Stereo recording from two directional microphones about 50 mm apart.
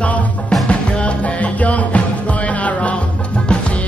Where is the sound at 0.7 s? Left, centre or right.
Left.